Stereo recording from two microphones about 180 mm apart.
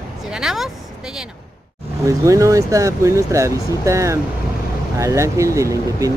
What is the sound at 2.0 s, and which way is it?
Speech, 15° right (ahead or behind).